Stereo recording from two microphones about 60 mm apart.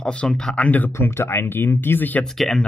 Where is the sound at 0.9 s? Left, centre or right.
Left.